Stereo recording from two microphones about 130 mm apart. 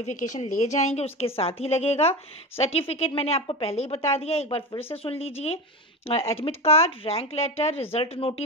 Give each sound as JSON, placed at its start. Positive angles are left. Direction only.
{"t": 0.0, "sound": "a woman's voice", "side_deg": 75}